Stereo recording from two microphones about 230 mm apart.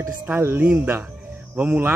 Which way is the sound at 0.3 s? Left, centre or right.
Centre.